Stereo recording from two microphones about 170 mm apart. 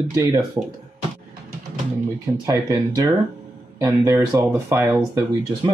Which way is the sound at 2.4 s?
20° right (ahead or behind).